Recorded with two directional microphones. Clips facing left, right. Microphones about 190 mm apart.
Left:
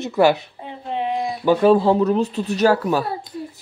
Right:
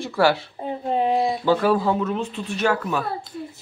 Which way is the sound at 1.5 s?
25° left (ahead or behind).